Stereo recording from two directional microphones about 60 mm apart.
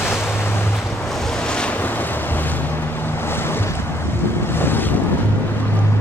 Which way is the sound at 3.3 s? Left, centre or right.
Left.